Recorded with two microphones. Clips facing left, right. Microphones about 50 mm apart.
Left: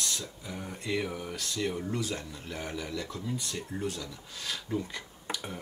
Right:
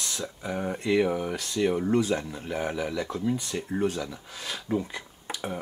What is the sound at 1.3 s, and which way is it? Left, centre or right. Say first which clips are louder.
Speech: right 7 dB; right.